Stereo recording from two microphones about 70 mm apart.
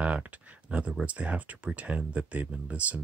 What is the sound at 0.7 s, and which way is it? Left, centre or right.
Speech, centre.